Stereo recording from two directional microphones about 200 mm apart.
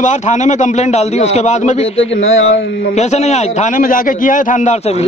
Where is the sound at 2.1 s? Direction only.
75° left (ahead or behind).